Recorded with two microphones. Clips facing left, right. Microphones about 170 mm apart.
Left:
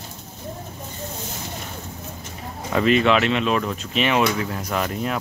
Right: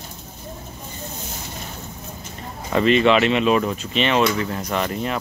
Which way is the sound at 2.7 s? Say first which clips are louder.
Right 2 dB; centre (ahead or behind).